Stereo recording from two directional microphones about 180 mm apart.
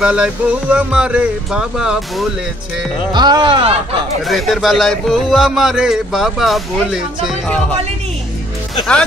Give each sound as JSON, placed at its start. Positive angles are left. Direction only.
{"t": 0.0, "sound": "a man's voice", "side_deg": -5}
{"t": 3.1, "sound": "speech", "side_deg": -25}
{"t": 4.2, "sound": "a man's voice", "side_deg": 0}